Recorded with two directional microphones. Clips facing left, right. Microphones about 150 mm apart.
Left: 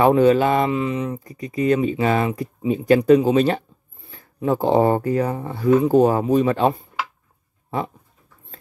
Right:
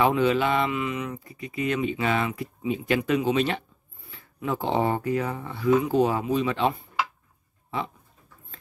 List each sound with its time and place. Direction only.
0.0 s speech: 45° left (ahead or behind)